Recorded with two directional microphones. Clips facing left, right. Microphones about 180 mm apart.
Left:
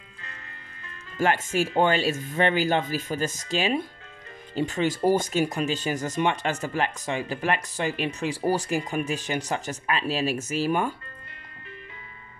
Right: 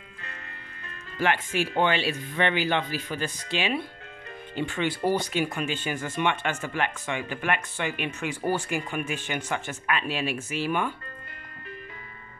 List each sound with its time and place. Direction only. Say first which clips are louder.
1.1 s speech: left 2 dB; 45° left (ahead or behind)